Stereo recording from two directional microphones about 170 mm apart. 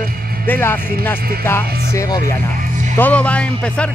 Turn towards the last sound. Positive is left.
turn(degrees=5)  # may be behind; listen again after turning